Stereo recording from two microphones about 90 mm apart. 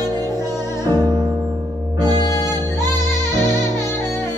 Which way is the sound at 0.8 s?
45° right (ahead or behind).